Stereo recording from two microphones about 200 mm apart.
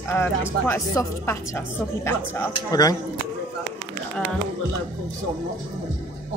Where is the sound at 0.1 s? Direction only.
10° left (ahead or behind).